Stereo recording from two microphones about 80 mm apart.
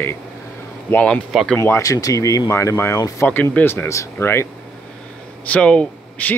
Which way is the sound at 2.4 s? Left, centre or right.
Left.